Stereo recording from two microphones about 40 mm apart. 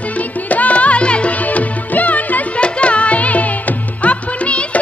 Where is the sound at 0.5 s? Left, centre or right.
Left.